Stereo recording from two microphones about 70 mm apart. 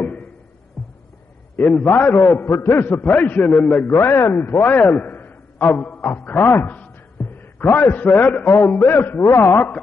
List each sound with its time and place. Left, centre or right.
0.0 s music: left
1.6 s a man's voice: centre
1.9 s a man's voice: left
3.9 s a man's voice: left